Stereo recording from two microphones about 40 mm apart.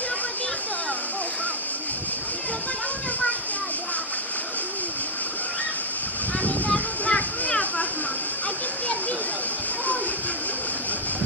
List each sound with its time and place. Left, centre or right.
6.7 s children playing: left